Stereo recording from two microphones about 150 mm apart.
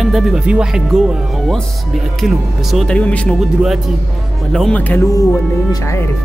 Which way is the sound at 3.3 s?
Centre (ahead or behind).